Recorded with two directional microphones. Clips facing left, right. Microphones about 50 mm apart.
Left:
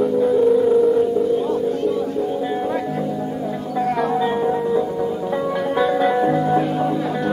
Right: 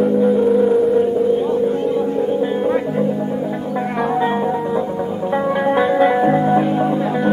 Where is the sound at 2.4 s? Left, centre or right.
Right.